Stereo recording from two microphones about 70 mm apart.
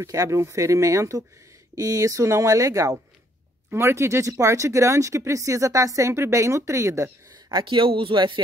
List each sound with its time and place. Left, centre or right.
0.0 s speech: right
3.7 s speech: right
7.3 s a sound: right